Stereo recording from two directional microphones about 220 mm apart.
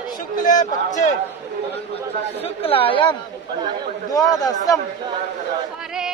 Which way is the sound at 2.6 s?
25° left (ahead or behind).